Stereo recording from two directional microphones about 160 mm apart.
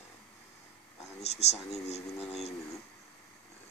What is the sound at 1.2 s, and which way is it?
Speech, 40° left (ahead or behind).